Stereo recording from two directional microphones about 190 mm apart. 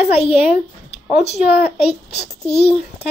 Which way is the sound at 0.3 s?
5° right (ahead or behind).